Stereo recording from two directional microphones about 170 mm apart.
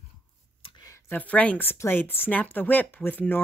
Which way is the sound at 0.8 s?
15° left (ahead or behind).